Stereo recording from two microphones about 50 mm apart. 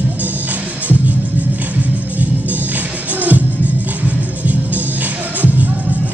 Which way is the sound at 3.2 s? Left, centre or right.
Right.